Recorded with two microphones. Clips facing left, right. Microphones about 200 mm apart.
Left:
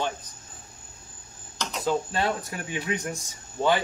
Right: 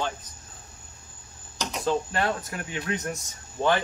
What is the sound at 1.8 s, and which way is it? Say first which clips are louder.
Speech: even; 15° left (ahead or behind).